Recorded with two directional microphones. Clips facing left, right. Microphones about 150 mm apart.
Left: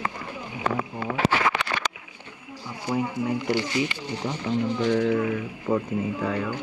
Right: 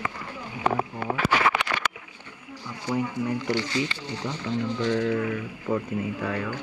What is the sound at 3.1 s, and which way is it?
Speech, 10° left (ahead or behind).